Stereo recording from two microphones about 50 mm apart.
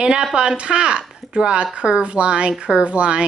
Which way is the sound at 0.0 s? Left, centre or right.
Centre.